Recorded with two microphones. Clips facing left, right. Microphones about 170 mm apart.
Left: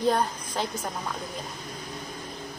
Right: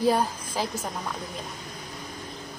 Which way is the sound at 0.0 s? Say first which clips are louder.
Right 1 dB; 5° right (ahead or behind).